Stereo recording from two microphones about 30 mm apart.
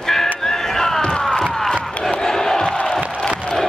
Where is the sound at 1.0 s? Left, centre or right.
Left.